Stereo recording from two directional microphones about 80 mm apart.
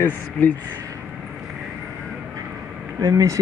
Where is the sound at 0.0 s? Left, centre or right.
Left.